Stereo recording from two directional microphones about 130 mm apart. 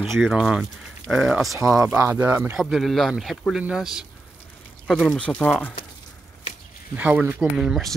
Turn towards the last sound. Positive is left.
turn(degrees=0)  # may be behind; listen again after turning